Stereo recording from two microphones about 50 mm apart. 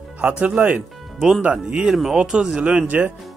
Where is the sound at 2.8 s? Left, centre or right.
Right.